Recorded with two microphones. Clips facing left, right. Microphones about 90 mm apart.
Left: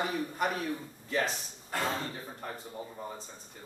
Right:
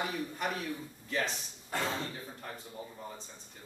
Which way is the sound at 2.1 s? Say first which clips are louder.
Left 3 dB; 30° left (ahead or behind).